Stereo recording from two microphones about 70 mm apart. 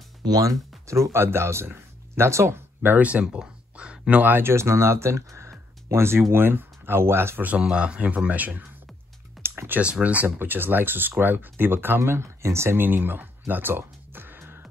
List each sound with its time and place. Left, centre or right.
0.2 s speech: right
7.6 s a man's voice: centre
9.4 s typing: right
9.8 s a man's voice: centre
10.2 s speech: right